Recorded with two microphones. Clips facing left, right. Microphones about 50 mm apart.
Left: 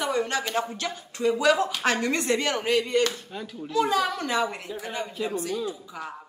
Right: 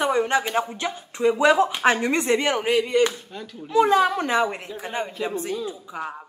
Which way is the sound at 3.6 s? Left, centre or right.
Centre.